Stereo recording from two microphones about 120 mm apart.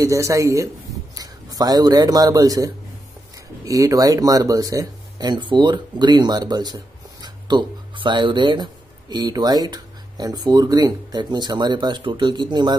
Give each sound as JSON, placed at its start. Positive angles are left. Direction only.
{"t": 0.0, "sound": "a man's voice", "side_deg": -25}